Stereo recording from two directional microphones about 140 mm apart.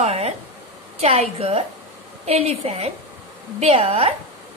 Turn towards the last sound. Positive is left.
turn(degrees=-40)  # may be behind; listen again after turning